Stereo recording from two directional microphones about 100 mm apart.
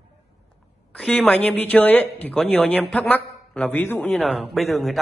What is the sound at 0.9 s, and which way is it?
Speech, 10° left (ahead or behind).